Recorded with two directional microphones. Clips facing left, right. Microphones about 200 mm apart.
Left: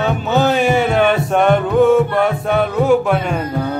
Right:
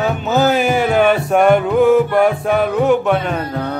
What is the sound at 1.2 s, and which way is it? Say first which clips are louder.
Mantra: right 2 dB; 5° right (ahead or behind).